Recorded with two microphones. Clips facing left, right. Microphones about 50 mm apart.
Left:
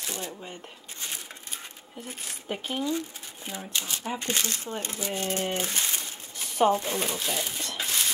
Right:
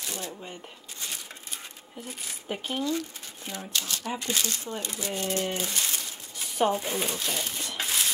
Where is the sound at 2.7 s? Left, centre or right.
Centre.